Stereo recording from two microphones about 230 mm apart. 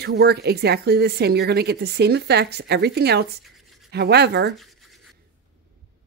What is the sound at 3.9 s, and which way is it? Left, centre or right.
Speech, right.